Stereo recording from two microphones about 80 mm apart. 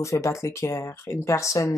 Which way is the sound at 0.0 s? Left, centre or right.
Left.